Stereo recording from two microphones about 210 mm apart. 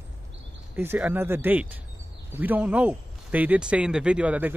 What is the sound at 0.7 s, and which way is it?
Speech, 10° right (ahead or behind).